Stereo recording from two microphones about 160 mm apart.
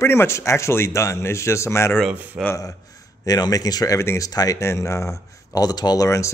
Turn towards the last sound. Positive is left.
turn(degrees=20)  # may be behind; listen again after turning